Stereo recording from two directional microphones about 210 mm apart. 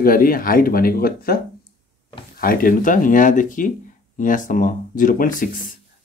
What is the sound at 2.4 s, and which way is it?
Speech, 40° left (ahead or behind).